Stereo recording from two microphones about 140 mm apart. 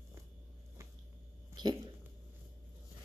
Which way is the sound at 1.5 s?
30° right (ahead or behind).